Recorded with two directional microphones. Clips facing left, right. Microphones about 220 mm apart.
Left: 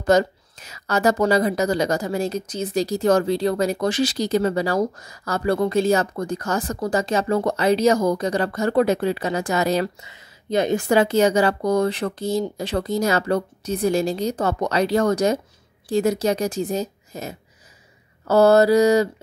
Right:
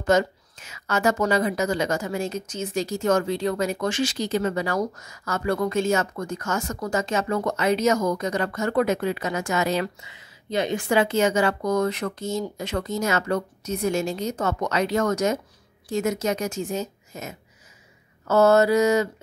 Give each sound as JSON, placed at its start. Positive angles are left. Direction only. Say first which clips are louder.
{"t": 0.0, "sound": "a woman's voice", "louder": "left 3 dB", "side_deg": 35}